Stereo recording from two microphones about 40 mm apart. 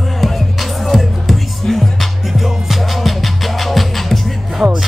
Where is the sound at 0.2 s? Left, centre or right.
Centre.